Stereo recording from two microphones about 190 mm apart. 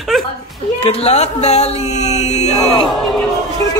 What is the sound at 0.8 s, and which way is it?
Speech, 30° left (ahead or behind).